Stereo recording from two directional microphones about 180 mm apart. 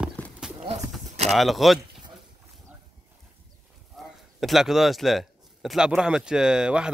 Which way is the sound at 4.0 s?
Centre (ahead or behind).